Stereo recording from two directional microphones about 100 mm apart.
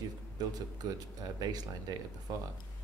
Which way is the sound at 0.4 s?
40° right (ahead or behind).